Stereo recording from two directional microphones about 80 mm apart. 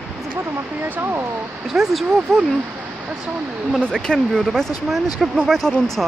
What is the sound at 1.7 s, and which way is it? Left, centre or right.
Speech, centre.